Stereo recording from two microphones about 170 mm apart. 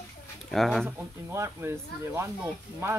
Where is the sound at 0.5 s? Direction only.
Centre (ahead or behind).